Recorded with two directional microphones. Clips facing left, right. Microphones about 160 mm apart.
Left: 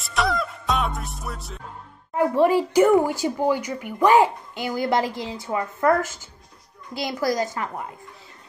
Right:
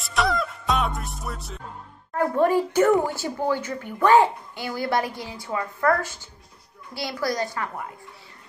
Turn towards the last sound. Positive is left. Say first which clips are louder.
# left 3 dB
turn(degrees=20)  # may be behind; listen again after turning